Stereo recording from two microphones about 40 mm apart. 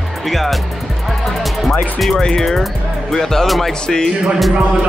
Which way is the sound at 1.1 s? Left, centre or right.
Centre.